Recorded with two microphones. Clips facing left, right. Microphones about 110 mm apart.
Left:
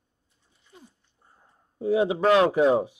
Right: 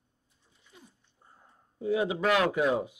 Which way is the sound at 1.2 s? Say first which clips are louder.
Right 1 dB; 10° right (ahead or behind).